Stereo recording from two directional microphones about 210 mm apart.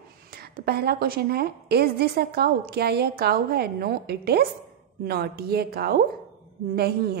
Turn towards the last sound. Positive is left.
turn(degrees=-45)  # may be behind; listen again after turning